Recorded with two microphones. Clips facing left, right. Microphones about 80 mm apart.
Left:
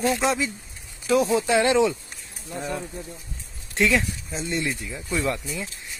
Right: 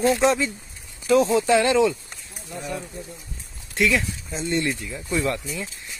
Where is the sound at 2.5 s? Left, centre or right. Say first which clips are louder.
Left 1 dB; left.